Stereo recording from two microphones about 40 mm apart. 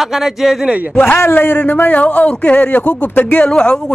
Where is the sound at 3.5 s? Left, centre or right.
Left.